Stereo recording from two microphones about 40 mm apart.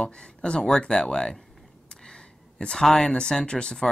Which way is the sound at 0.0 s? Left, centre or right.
Centre.